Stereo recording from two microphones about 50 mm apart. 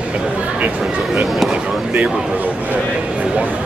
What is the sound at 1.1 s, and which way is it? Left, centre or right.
Speech, centre.